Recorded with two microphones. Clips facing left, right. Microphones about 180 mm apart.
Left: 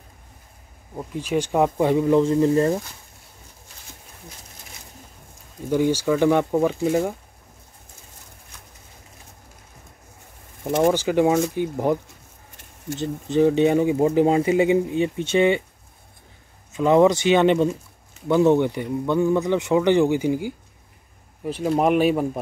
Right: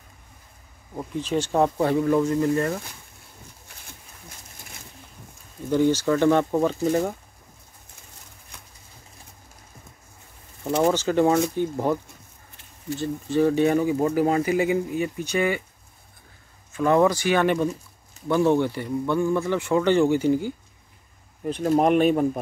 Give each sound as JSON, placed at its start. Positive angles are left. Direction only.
{"t": 0.9, "sound": "speech", "side_deg": 10}
{"t": 2.2, "sound": "speech", "side_deg": 30}
{"t": 5.7, "sound": "speech", "side_deg": 10}
{"t": 10.6, "sound": "speech", "side_deg": 15}
{"t": 13.0, "sound": "speech", "side_deg": 20}
{"t": 16.7, "sound": "speech", "side_deg": 20}